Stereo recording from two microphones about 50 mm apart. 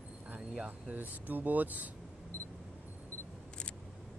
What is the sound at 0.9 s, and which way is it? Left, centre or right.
Speech, right.